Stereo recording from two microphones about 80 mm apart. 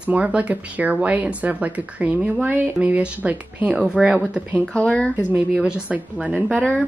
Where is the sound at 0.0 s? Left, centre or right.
Centre.